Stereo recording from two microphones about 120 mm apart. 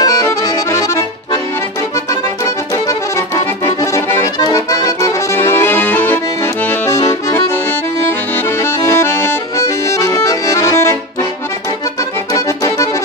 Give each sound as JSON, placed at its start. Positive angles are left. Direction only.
{"t": 0.0, "sound": "accordion", "side_deg": 30}
{"t": 2.4, "sound": "accordion", "side_deg": 25}
{"t": 6.9, "sound": "accordion", "side_deg": 25}
{"t": 8.5, "sound": "accordion", "side_deg": 20}
{"t": 12.4, "sound": "accordion", "side_deg": 25}